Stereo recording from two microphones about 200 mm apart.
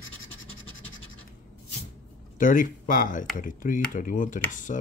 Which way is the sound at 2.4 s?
40° left (ahead or behind).